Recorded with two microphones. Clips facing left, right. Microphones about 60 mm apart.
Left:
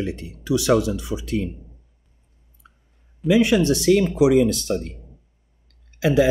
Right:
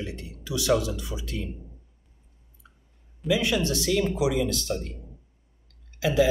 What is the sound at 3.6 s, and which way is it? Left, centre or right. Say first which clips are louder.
Speech: left 9 dB; left.